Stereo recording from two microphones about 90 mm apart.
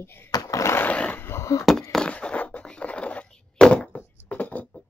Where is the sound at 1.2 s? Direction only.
30° left (ahead or behind).